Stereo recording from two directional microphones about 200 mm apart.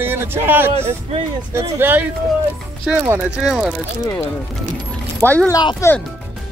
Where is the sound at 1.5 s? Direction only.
10° right (ahead or behind).